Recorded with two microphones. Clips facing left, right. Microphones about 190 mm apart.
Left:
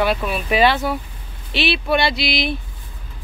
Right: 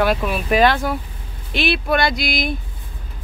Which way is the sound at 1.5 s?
45° right (ahead or behind).